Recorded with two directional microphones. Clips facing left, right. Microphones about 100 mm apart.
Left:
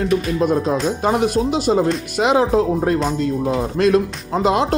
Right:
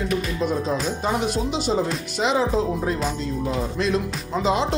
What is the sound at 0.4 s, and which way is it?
Speech, 45° left (ahead or behind).